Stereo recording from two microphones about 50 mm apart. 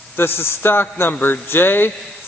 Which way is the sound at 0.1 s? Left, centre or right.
Left.